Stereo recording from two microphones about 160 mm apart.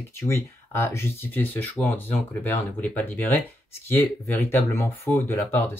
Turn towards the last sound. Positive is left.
turn(degrees=10)  # may be behind; listen again after turning